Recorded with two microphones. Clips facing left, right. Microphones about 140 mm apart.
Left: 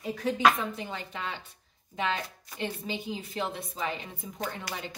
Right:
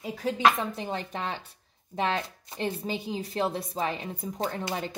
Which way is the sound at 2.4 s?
35° right (ahead or behind).